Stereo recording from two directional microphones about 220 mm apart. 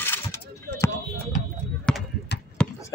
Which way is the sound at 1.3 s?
35° left (ahead or behind).